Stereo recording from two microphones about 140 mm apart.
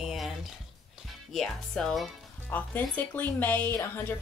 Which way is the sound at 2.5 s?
10° left (ahead or behind).